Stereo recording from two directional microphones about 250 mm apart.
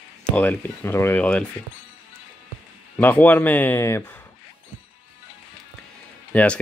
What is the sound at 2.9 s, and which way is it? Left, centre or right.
Speech, centre.